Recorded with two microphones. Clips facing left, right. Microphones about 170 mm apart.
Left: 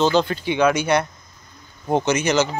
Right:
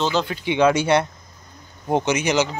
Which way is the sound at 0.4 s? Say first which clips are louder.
Right 1 dB; 20° right (ahead or behind).